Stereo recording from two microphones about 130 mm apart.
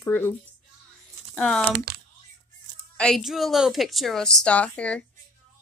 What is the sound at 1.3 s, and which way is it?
Speech, 5° left (ahead or behind).